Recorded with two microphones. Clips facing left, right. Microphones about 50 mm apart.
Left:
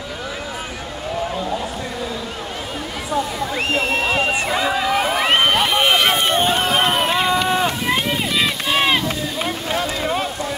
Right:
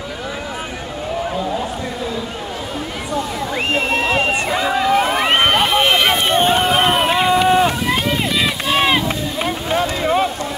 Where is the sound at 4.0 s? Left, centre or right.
Right.